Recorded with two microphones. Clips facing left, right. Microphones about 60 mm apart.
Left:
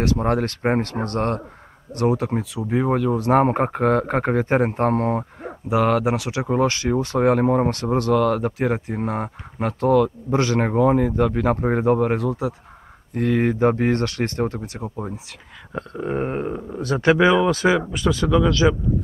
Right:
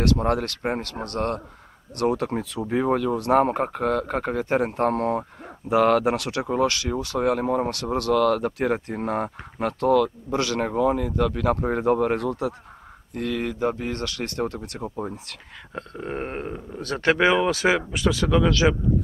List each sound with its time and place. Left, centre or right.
0.0 s speech: left
2.0 s speech: centre
3.2 s speech: left
5.7 s speech: centre
6.7 s speech: left
11.8 s speech: centre
13.1 s speech: left
14.4 s speech: left
14.8 s speech: centre
17.6 s speech: centre
18.2 s speech: centre
18.6 s speech: centre